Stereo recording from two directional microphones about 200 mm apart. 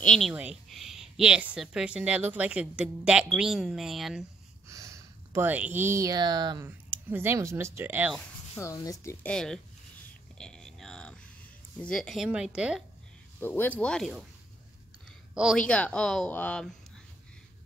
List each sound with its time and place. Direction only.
0.0 s a woman's voice: centre (ahead or behind)
4.6 s speech: 15° right (ahead or behind)
8.5 s speech: 15° left (ahead or behind)
9.2 s a woman's voice: 5° left (ahead or behind)
10.3 s a sound: 5° left (ahead or behind)
11.8 s a woman's voice: 5° left (ahead or behind)
13.4 s speech: 10° left (ahead or behind)
15.3 s a woman's voice: centre (ahead or behind)